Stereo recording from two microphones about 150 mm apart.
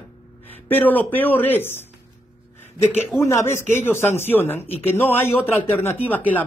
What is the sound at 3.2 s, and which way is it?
Speech, 15° left (ahead or behind).